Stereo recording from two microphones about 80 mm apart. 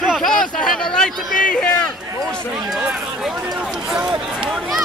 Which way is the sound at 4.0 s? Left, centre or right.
Centre.